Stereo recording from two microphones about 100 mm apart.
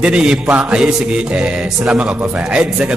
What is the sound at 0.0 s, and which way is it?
Music, 10° right (ahead or behind).